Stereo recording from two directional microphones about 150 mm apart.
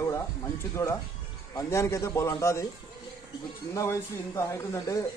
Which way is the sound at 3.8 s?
20° left (ahead or behind).